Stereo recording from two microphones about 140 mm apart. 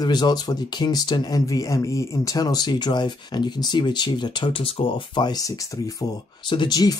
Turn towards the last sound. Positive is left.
turn(degrees=30)  # may be behind; listen again after turning